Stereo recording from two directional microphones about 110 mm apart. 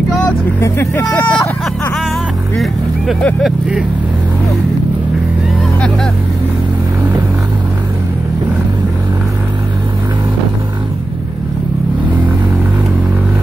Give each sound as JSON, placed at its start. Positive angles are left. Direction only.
{"t": 0.6, "sound": "speech", "side_deg": 20}
{"t": 2.5, "sound": "speech", "side_deg": 0}